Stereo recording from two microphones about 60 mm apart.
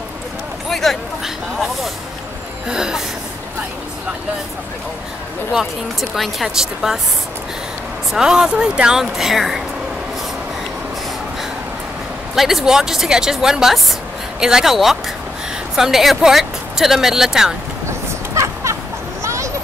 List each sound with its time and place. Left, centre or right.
0.7 s a sound: centre
2.7 s speech: centre
5.5 s speech: centre
8.1 s speech: centre
12.4 s speech: centre
17.8 s a sound: right